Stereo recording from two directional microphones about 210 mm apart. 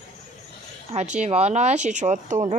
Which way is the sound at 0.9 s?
35° right (ahead or behind).